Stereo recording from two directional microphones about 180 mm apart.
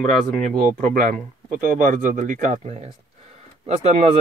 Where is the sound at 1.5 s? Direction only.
45° right (ahead or behind).